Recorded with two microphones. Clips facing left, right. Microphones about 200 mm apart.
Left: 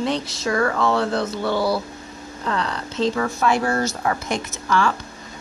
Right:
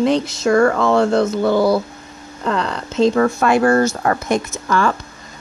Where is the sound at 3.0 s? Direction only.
55° right (ahead or behind).